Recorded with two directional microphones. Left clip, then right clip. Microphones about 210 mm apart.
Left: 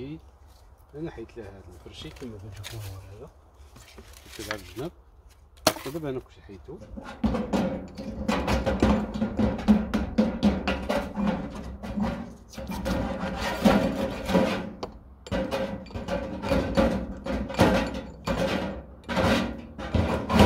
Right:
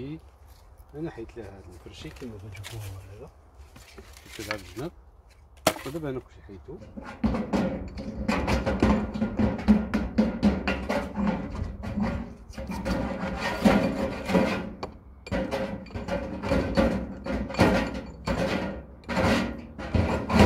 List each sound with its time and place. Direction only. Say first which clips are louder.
1.0 s speech: right 1 dB; 20° right (ahead or behind)
2.0 s speech: right 2 dB; 5° left (ahead or behind)
4.4 s speech: even; centre (ahead or behind)
5.6 s chop: left 1 dB; 10° left (ahead or behind)
7.0 s music: left 1 dB; 5° left (ahead or behind)